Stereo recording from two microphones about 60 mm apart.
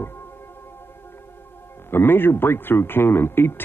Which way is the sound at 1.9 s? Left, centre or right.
Left.